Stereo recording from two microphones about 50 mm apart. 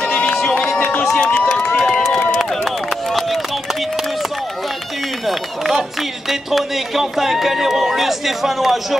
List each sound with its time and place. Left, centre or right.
0.0 s run: left
1.5 s crowd: centre
6.5 s a man's voice: centre